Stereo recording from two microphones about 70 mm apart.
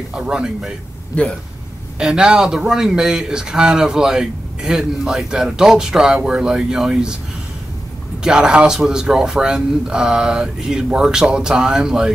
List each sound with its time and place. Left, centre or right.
0.1 s a man's voice: centre
1.1 s speech: left
2.0 s a man's voice: centre
8.2 s a man's voice: centre